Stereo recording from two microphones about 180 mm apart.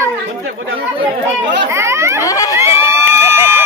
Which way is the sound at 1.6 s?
15° right (ahead or behind).